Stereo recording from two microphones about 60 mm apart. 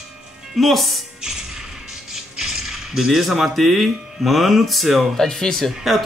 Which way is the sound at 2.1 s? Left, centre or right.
Centre.